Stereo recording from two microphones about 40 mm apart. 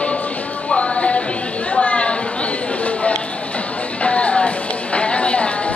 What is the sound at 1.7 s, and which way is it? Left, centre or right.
Chatter, left.